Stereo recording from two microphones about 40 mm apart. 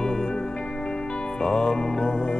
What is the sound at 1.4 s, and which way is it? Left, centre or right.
Music, centre.